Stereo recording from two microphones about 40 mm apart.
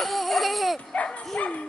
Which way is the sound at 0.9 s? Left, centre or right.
Left.